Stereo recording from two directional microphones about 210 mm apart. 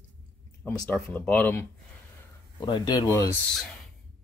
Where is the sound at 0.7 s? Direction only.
10° left (ahead or behind).